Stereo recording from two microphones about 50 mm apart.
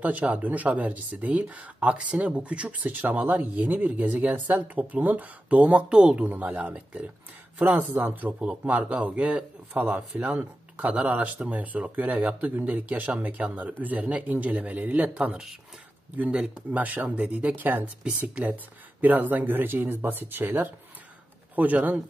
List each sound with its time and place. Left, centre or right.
0.0 s speech: right
6.2 s speech: right
16.7 s speech: right
17.6 s speech: right
18.0 s speech: right
18.4 s speech: right
21.5 s speech: right